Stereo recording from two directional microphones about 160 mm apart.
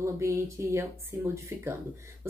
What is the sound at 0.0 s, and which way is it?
Speech, 20° right (ahead or behind).